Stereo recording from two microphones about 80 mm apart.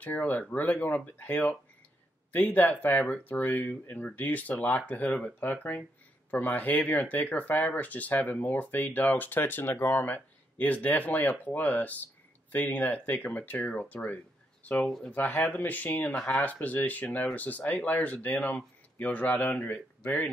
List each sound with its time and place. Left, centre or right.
0.0 s speech: left
16.2 s speech: centre
16.4 s speech: centre